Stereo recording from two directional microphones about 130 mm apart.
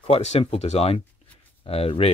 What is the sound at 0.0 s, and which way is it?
Speech, 50° left (ahead or behind).